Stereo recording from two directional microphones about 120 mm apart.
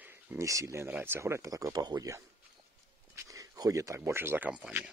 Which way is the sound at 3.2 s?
30° right (ahead or behind).